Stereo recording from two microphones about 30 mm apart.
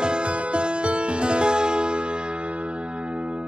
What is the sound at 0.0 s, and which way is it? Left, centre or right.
Music, right.